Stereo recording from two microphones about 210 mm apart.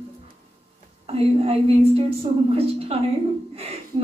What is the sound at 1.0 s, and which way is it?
A woman's voice, 30° right (ahead or behind).